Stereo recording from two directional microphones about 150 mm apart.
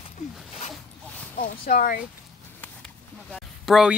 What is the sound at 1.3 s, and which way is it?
Speech, 65° left (ahead or behind).